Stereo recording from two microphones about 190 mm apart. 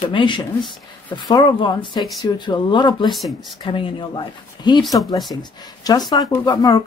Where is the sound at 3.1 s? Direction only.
Centre (ahead or behind).